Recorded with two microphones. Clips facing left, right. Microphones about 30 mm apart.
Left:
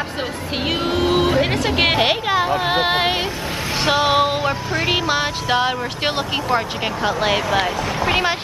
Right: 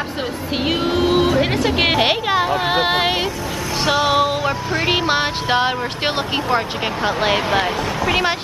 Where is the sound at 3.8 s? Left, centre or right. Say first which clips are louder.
Even; centre.